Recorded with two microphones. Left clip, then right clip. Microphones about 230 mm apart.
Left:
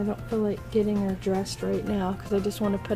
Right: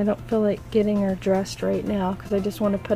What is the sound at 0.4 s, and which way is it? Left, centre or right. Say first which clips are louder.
Speech: right 2 dB; right.